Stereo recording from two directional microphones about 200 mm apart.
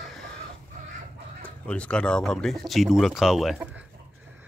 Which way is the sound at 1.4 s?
5° left (ahead or behind).